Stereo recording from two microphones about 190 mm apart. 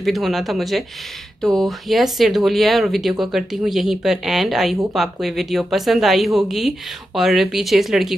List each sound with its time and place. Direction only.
0.0 s speech: centre (ahead or behind)